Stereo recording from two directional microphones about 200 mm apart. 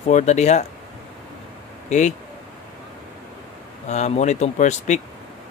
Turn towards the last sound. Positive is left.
turn(degrees=35)  # may be behind; listen again after turning